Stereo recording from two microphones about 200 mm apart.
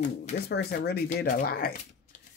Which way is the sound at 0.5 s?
55° left (ahead or behind).